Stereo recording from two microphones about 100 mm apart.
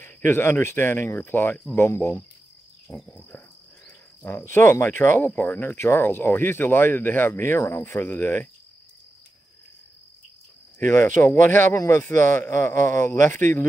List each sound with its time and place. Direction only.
0.0 s speech: 20° left (ahead or behind)
10.8 s speech: 20° left (ahead or behind)